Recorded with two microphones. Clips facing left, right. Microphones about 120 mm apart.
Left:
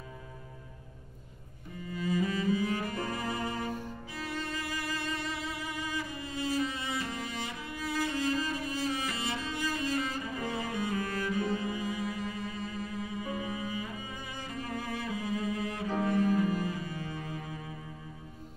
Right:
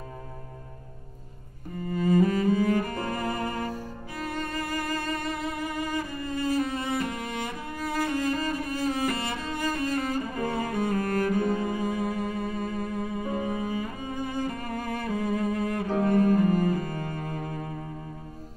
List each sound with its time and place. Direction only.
1.8 s cello: 45° right (ahead or behind)